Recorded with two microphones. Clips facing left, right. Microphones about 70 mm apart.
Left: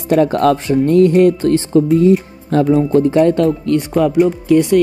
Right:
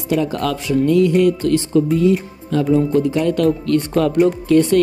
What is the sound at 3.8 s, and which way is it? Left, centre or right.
Speech, centre.